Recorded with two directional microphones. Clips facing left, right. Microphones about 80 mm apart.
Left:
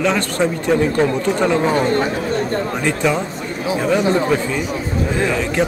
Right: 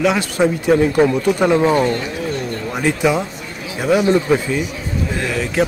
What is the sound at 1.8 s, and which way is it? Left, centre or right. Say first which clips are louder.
Speech: left 1 dB; left.